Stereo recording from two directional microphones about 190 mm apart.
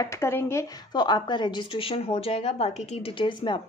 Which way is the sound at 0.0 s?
15° left (ahead or behind).